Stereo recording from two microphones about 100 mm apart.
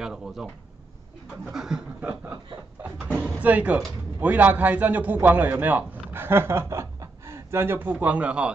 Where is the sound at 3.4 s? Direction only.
15° right (ahead or behind).